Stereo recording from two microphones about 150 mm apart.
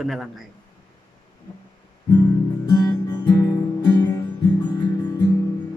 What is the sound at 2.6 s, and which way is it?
Guitar, 25° left (ahead or behind).